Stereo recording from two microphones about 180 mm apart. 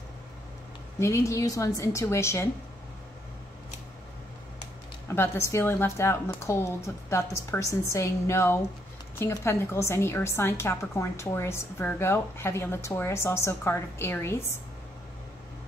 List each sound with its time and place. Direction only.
0.9 s a woman's voice: 15° left (ahead or behind)
5.0 s a woman's voice: 15° left (ahead or behind)